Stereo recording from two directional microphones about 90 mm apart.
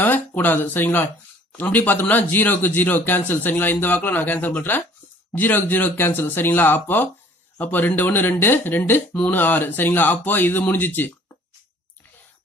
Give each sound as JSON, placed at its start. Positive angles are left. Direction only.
{"t": 0.0, "sound": "speech", "side_deg": 20}